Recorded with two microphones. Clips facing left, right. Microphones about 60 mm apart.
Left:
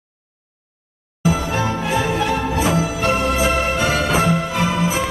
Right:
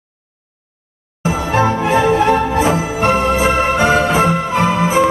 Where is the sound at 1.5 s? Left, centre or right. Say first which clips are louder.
Right 6 dB; right.